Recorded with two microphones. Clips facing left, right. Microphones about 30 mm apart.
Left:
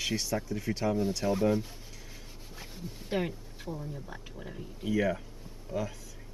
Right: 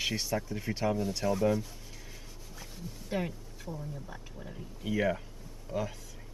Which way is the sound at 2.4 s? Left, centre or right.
Left.